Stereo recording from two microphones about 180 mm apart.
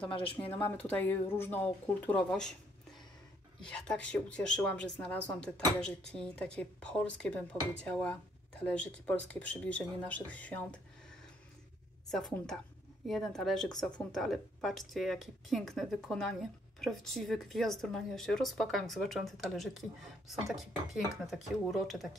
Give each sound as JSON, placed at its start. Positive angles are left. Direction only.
{"t": 0.0, "sound": "speech", "side_deg": 30}
{"t": 0.5, "sound": "speech", "side_deg": 10}
{"t": 3.6, "sound": "speech", "side_deg": 5}
{"t": 12.1, "sound": "speech", "side_deg": 5}